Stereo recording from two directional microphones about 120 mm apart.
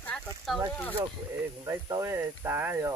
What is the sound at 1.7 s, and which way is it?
Speech, 25° right (ahead or behind).